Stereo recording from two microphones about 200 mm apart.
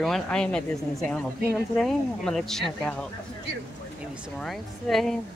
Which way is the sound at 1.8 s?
Centre (ahead or behind).